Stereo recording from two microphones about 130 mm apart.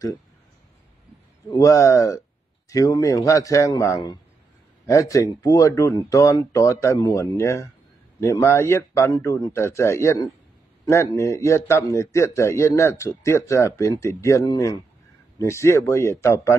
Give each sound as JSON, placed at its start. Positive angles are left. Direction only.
{"t": 1.5, "sound": "a man's voice", "side_deg": 25}